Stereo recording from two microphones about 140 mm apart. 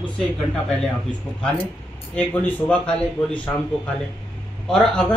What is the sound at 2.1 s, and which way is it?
Speech, 10° left (ahead or behind).